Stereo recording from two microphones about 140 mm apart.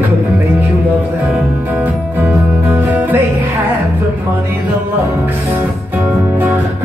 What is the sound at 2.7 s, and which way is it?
Music, 15° right (ahead or behind).